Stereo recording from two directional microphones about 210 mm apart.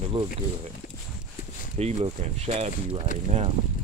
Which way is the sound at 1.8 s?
30° right (ahead or behind).